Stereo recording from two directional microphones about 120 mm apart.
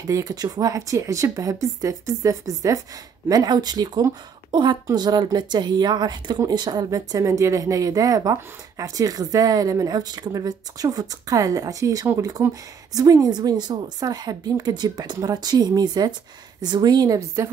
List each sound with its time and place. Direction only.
0.0 s speech: 30° right (ahead or behind)